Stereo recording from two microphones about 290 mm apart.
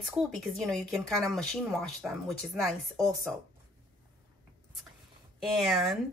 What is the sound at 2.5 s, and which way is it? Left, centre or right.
Speech, centre.